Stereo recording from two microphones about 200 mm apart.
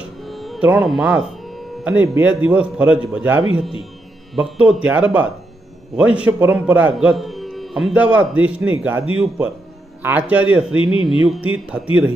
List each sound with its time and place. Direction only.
0.2 s music: centre (ahead or behind)
1.9 s speech: 10° right (ahead or behind)
10.0 s speech: 10° right (ahead or behind)
10.7 s a man's voice: 25° left (ahead or behind)
11.6 s speech: 5° right (ahead or behind)